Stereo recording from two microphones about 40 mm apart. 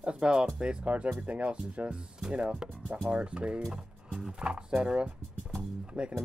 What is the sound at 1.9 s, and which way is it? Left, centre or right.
Speech, right.